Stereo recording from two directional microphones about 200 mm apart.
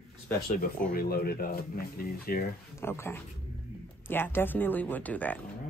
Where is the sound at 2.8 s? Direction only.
10° left (ahead or behind).